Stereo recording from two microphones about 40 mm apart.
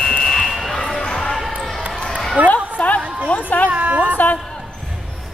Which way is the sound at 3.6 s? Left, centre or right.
Right.